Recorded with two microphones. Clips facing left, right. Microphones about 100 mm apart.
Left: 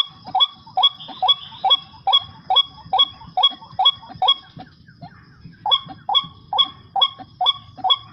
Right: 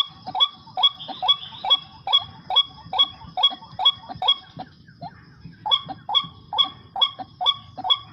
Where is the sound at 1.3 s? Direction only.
45° left (ahead or behind).